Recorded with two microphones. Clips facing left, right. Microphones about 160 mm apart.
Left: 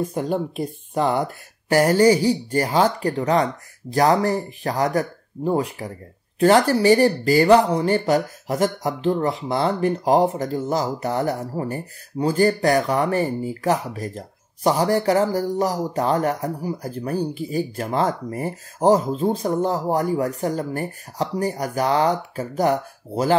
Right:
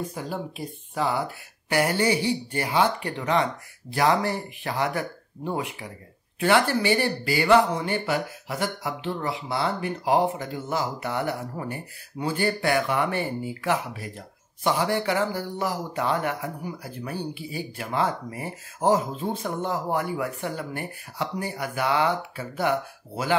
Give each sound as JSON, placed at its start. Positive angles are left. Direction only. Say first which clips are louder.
{"t": 0.9, "sound": "speech", "louder": "left 5 dB", "side_deg": 45}